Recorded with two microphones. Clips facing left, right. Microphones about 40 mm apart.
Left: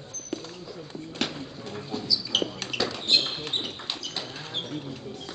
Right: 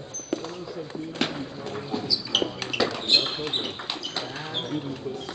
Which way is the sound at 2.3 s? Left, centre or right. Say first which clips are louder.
Right 4 dB; centre.